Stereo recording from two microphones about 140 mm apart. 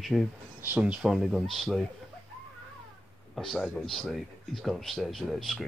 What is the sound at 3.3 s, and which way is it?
Speech, centre (ahead or behind).